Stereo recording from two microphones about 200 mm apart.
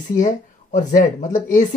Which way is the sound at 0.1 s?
40° left (ahead or behind).